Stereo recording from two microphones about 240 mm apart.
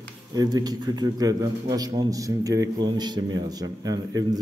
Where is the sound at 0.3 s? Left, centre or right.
Centre.